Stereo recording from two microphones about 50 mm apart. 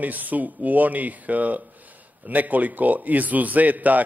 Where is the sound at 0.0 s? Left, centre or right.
Right.